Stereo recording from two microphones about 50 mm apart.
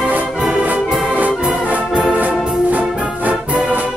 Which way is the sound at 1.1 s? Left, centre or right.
Right.